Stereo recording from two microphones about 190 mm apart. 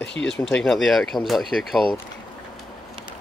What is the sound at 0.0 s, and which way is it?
Speech, 70° left (ahead or behind).